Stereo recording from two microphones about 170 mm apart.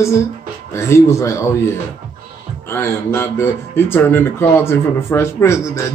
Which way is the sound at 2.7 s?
15° left (ahead or behind).